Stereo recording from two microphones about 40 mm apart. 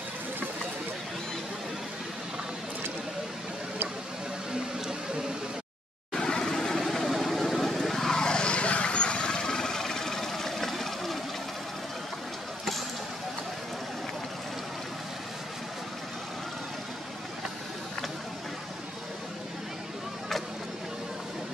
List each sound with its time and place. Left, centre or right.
4.7 s a sound: centre
6.1 s vehicle: centre
8.2 s vehicle: left; by 11.1 s centre